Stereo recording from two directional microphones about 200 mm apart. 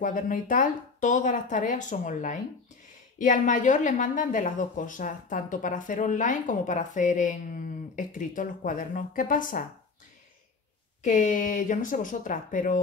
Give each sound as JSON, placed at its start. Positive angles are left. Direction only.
{"t": 0.0, "sound": "speech", "side_deg": 40}
{"t": 11.0, "sound": "speech", "side_deg": 40}